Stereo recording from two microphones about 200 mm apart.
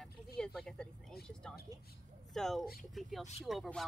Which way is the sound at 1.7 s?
15° right (ahead or behind).